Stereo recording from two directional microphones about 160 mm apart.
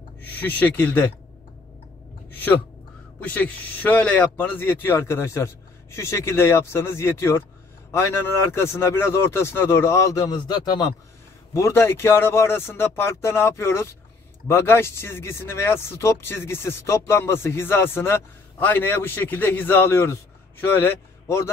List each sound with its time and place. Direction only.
0.3 s speech: 10° left (ahead or behind)
3.2 s speech: 10° left (ahead or behind)